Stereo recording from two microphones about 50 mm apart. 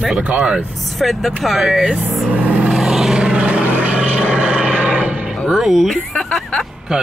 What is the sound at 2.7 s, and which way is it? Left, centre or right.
Vehicle, centre.